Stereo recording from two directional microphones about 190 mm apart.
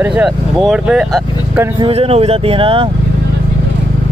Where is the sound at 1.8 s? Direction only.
30° right (ahead or behind).